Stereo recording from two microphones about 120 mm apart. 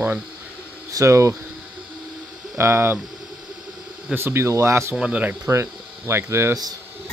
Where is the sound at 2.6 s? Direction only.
20° right (ahead or behind).